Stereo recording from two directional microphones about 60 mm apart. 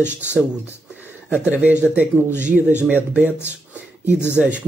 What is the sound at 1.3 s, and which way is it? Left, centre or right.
Speech, right.